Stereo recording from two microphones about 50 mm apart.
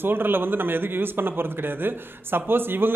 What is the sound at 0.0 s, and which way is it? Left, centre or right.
A man's voice, right.